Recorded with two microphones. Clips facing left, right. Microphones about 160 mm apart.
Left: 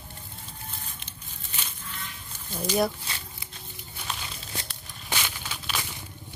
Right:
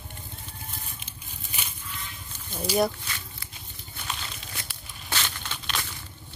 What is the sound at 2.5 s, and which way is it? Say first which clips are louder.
Speech: right 1 dB; 5° right (ahead or behind).